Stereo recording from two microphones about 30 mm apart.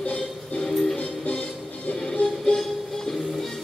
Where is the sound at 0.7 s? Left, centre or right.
Centre.